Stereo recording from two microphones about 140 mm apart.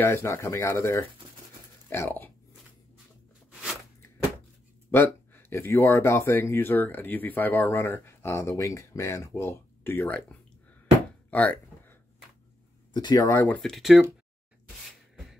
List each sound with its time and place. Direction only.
0.0 s speech: 20° left (ahead or behind)
4.9 s speech: 15° left (ahead or behind)
11.2 s a sound: 10° left (ahead or behind)
12.9 s speech: 30° left (ahead or behind)
13.3 s speech: 15° left (ahead or behind)
13.6 s speech: centre (ahead or behind)